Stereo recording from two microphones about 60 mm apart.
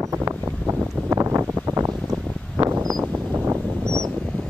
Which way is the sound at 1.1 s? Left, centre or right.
Right.